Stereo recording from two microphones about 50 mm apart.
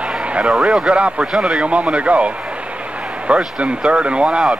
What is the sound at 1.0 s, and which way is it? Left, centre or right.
Speech, right.